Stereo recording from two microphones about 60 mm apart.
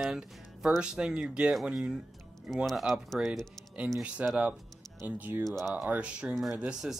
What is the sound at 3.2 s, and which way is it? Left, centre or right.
Speech, centre.